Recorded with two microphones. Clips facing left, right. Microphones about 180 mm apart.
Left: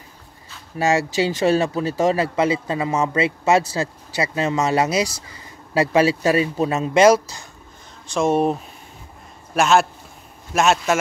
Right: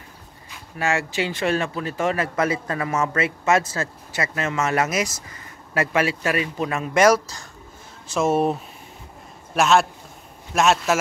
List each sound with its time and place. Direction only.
0.7 s speech: 35° left (ahead or behind); by 3.2 s 15° left (ahead or behind)
3.2 s speech: 30° left (ahead or behind)
8.1 s speech: 5° right (ahead or behind)